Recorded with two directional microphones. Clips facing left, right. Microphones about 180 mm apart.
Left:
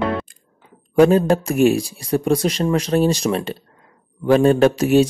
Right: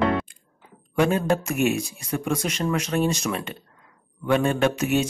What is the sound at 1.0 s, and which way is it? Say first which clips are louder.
Speech: left 8 dB; 40° left (ahead or behind).